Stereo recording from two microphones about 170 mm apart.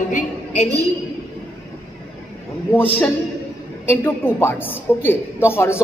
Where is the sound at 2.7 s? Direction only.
10° left (ahead or behind).